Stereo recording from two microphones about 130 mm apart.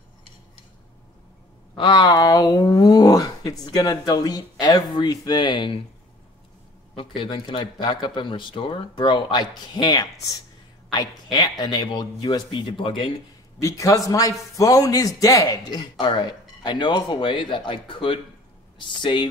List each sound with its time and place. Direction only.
1.8 s speech: 35° left (ahead or behind)
7.2 s speech: 40° left (ahead or behind)
13.6 s a man's voice: 25° left (ahead or behind)